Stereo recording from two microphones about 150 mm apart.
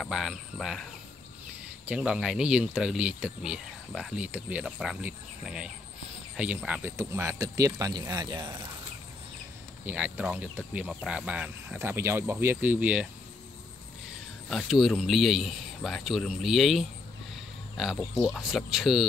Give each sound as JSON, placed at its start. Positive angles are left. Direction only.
{"t": 0.0, "sound": "speech", "side_deg": 0}
{"t": 1.9, "sound": "speech", "side_deg": -5}
{"t": 7.0, "sound": "speech", "side_deg": -20}
{"t": 9.8, "sound": "speech", "side_deg": -10}
{"t": 14.5, "sound": "speech", "side_deg": 0}